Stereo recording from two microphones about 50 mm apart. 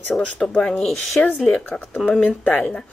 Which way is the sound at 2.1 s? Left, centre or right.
Left.